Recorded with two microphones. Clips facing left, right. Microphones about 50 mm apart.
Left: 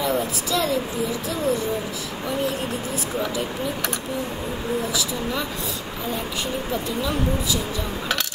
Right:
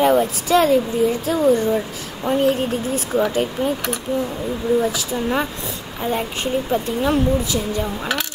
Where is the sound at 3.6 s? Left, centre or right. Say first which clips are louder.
Right 9 dB; right.